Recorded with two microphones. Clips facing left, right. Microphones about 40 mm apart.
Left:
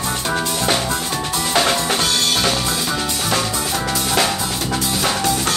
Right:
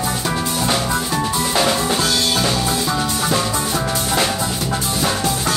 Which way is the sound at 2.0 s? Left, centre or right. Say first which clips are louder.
Even; left.